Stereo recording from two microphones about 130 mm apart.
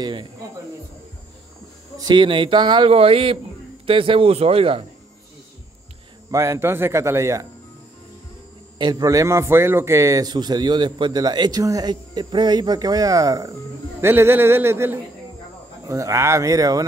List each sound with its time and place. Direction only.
0.0 s speech: 40° right (ahead or behind)
2.0 s speech: 35° right (ahead or behind)
6.3 s a man's voice: 20° right (ahead or behind)
8.7 s a man's voice: 30° right (ahead or behind)